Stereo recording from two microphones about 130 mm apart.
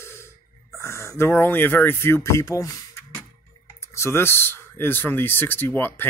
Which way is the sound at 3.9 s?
20° left (ahead or behind).